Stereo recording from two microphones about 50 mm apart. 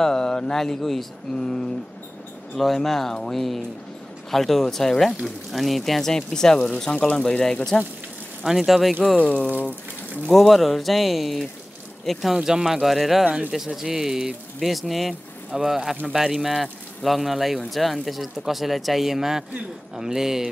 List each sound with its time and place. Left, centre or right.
0.0 s speech: centre
8.5 s speech: centre
9.2 s speech: left
10.3 s speech: centre